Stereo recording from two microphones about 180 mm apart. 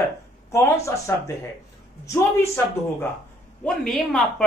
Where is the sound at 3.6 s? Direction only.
5° left (ahead or behind).